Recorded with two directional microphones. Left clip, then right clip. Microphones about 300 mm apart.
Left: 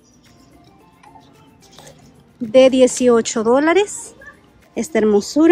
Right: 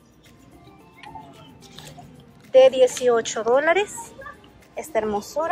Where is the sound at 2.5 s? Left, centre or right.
Centre.